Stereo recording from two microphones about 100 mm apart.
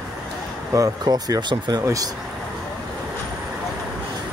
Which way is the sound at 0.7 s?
40° right (ahead or behind).